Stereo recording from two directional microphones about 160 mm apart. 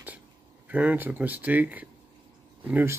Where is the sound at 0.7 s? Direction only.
10° right (ahead or behind).